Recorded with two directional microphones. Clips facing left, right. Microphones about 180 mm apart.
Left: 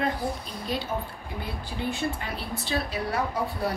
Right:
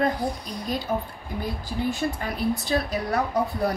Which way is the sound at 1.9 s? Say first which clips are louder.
Right 1 dB; 40° right (ahead or behind).